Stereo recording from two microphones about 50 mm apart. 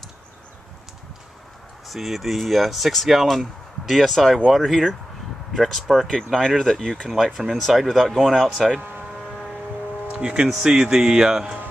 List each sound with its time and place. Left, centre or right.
1.9 s speech: centre
10.1 s speech: centre